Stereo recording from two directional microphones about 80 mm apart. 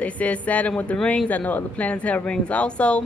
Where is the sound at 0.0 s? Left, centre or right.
Centre.